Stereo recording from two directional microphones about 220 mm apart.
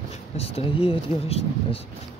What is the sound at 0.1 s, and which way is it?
Speech, 25° left (ahead or behind).